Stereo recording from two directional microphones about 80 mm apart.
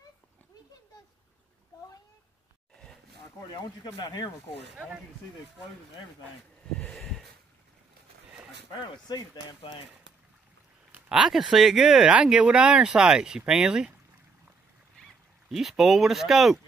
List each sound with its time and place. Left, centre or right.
3.5 s speech: left
4.7 s speech: centre
9.1 s speech: left
11.1 s speech: centre
15.5 s speech: centre